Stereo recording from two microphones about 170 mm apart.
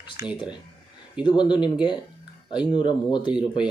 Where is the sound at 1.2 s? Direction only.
25° left (ahead or behind).